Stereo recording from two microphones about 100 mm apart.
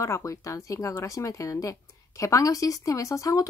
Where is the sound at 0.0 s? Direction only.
30° left (ahead or behind).